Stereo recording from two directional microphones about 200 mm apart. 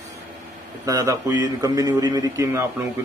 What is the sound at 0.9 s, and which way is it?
A man's voice, 15° right (ahead or behind).